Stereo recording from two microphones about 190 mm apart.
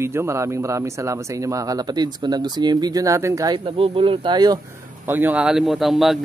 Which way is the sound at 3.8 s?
30° right (ahead or behind).